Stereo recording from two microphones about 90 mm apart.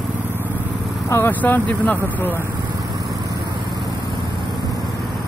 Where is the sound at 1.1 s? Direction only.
20° left (ahead or behind).